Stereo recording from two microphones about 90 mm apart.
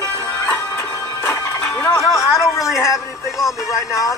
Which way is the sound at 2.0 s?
40° left (ahead or behind).